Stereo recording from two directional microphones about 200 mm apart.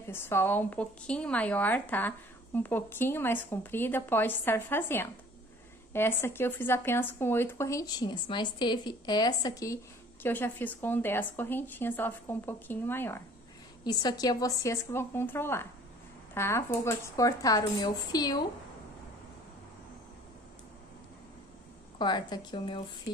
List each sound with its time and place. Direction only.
0.1 s a woman's voice: 10° left (ahead or behind)
21.9 s speech: 20° left (ahead or behind)